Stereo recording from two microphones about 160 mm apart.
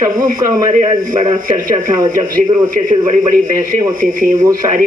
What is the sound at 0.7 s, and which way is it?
Speech, 40° right (ahead or behind).